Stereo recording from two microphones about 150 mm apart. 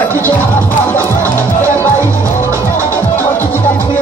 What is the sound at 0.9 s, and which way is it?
Music, 20° right (ahead or behind).